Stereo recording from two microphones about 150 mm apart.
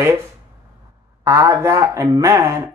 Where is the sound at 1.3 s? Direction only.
20° right (ahead or behind).